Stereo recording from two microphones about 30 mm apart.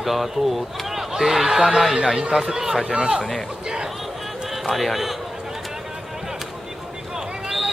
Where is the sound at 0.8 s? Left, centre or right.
Centre.